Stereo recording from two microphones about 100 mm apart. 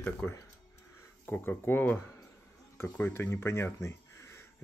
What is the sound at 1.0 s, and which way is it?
Speech, 20° left (ahead or behind).